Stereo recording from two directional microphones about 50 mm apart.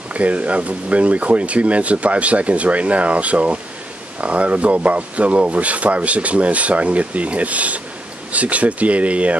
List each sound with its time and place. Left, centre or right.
0.1 s speech: right